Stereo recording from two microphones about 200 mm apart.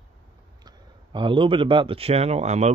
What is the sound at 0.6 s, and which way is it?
Speech, 25° right (ahead or behind).